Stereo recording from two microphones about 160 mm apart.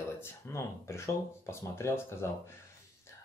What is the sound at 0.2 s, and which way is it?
Speech, 15° left (ahead or behind).